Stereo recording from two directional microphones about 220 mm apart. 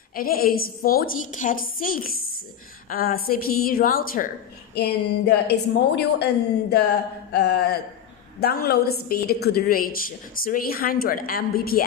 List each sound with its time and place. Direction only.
0.1 s a woman's voice: 40° left (ahead or behind)